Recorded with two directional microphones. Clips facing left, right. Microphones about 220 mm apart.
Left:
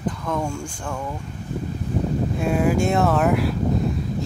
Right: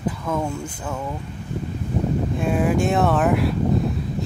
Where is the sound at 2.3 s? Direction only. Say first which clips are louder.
Left 1 dB; centre (ahead or behind).